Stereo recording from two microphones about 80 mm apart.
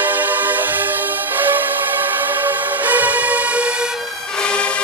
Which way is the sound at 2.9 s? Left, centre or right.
Right.